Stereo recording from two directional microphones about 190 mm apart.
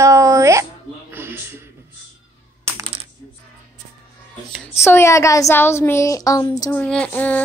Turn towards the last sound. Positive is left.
turn(degrees=10)  # may be behind; listen again after turning